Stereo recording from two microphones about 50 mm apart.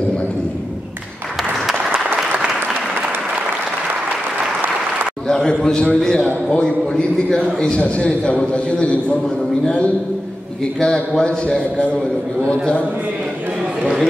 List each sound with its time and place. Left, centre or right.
1.9 s applause: right
5.3 s a man's voice: centre
6.2 s a man's voice: left
7.7 s a man's voice: left
10.8 s a man's voice: centre